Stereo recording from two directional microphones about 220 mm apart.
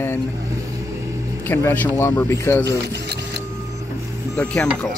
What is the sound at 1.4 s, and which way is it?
Speech, 10° left (ahead or behind).